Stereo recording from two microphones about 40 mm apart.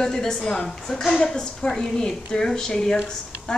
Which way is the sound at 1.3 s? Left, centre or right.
Centre.